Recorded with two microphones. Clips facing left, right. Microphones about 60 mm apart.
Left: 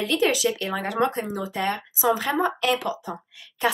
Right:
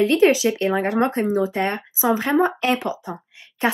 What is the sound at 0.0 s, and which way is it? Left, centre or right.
Speech, right.